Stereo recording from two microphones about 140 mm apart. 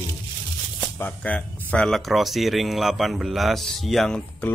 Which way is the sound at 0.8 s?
10° left (ahead or behind).